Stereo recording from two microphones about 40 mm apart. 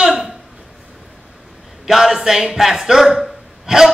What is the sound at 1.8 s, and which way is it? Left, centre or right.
A man's voice, centre.